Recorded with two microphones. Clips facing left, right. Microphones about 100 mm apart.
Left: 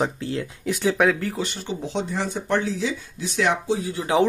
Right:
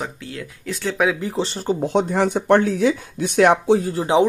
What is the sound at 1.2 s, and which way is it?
Speech, 30° right (ahead or behind).